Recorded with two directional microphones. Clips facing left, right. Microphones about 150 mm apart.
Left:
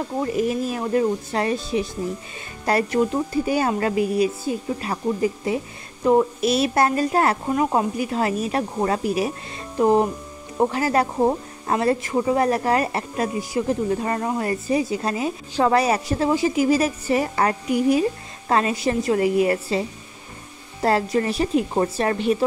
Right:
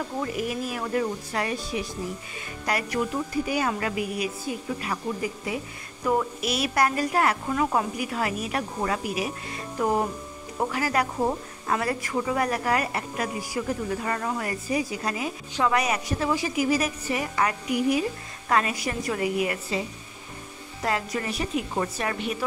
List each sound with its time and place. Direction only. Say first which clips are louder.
0.2 s a woman's voice: left 8 dB; 30° left (ahead or behind)
20.8 s speech: left 8 dB; 35° left (ahead or behind)